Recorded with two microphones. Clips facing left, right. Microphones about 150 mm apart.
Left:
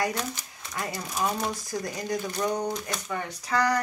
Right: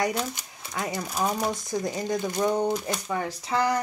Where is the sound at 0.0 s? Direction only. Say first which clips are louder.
Right 2 dB; 15° right (ahead or behind).